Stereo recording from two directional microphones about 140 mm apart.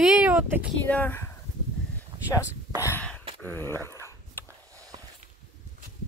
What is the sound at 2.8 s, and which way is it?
Gasp, 10° left (ahead or behind).